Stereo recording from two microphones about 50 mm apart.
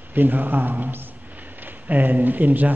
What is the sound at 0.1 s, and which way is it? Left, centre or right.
A man's voice, right.